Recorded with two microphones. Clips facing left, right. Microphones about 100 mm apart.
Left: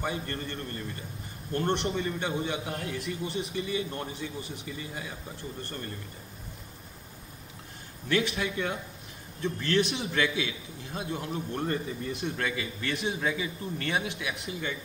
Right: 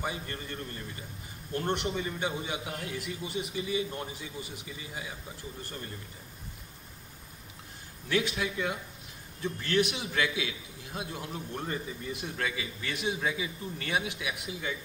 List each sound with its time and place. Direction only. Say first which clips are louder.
0.0 s a man's voice: left 3 dB; 10° right (ahead or behind)
8.1 s a man's voice: left 2 dB; 10° right (ahead or behind)